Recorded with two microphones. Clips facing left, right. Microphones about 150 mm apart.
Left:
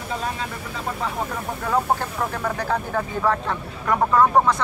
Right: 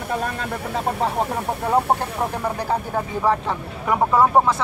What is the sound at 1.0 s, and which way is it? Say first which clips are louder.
Speech: right 3 dB; 30° right (ahead or behind).